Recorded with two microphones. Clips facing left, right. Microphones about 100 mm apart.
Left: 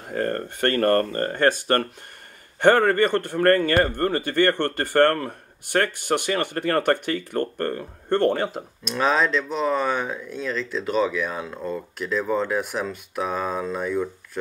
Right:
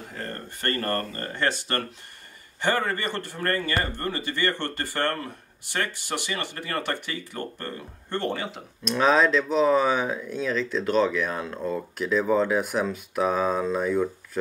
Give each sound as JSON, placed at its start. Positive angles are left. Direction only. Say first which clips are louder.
{"t": 0.1, "sound": "speech", "louder": "left 13 dB", "side_deg": 50}
{"t": 8.8, "sound": "speech", "louder": "right 1 dB", "side_deg": 0}